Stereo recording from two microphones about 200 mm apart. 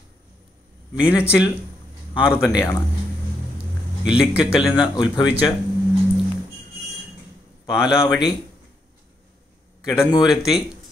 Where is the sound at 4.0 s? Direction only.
5° right (ahead or behind).